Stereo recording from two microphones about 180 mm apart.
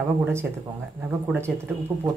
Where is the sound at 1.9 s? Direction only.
20° right (ahead or behind).